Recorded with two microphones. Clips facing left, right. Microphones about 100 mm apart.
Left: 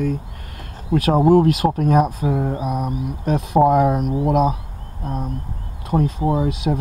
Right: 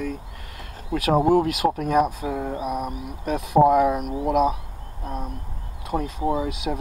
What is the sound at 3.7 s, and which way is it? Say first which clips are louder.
Speech: left 2 dB; 30° left (ahead or behind).